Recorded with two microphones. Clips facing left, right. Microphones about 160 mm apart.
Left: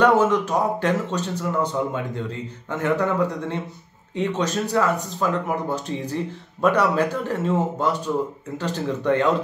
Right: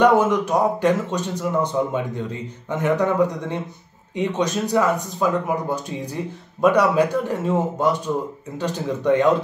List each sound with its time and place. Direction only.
0.0 s speech: 15° right (ahead or behind)
2.7 s speech: 15° right (ahead or behind)